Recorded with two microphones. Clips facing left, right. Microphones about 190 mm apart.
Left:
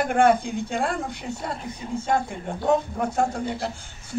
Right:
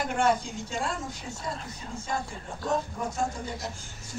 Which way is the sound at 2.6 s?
60° left (ahead or behind).